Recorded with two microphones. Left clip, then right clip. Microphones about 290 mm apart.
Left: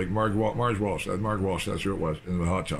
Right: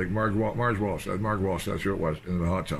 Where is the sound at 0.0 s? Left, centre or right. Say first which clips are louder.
Left 1 dB; centre.